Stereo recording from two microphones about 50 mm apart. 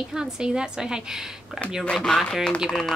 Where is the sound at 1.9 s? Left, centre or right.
Centre.